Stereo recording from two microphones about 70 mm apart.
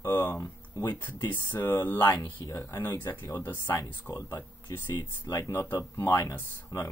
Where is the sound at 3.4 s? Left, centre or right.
Left.